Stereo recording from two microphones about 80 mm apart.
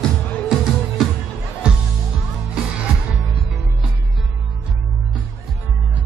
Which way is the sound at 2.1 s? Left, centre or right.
Centre.